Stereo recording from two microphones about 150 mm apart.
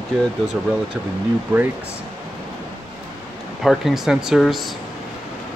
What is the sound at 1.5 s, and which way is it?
Speech, 15° right (ahead or behind).